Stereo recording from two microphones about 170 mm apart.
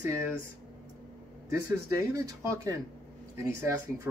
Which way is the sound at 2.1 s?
20° right (ahead or behind).